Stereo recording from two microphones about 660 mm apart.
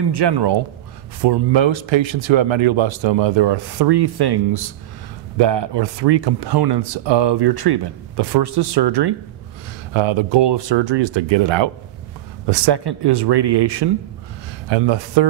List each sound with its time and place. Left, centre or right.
0.1 s speech: right